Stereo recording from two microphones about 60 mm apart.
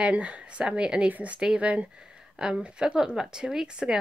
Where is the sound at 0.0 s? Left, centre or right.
Right.